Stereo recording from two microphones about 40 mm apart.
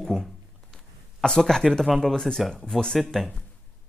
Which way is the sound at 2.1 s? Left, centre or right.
Centre.